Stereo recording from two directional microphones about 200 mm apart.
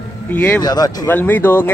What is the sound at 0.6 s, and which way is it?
Speech, 20° left (ahead or behind).